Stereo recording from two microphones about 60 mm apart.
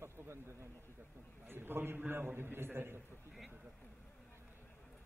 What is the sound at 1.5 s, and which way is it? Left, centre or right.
A man's voice, right.